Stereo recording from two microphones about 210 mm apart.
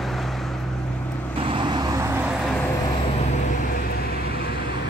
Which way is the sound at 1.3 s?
25° right (ahead or behind).